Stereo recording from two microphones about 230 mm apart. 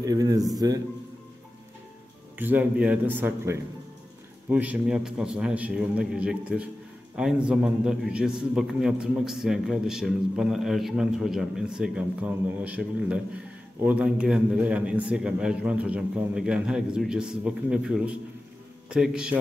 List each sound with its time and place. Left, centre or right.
0.0 s a man's voice: centre
2.3 s a man's voice: centre